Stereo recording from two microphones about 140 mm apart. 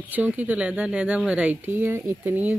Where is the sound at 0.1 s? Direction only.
10° right (ahead or behind).